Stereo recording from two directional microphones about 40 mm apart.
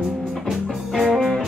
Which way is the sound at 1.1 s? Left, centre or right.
Centre.